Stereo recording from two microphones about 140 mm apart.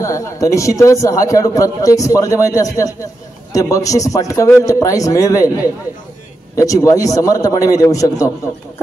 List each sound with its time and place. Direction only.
0.0 s a man's voice: 20° left (ahead or behind)